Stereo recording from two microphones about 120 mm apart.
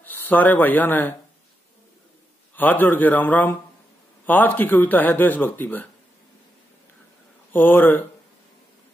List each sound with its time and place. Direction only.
0.0 s speech: 15° left (ahead or behind)
2.5 s speech: 15° left (ahead or behind)
7.5 s speech: 15° left (ahead or behind)